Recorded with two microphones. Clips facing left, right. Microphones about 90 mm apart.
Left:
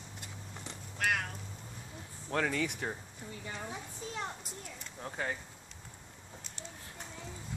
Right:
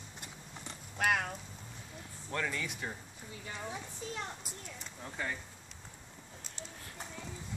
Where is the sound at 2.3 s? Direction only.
65° left (ahead or behind).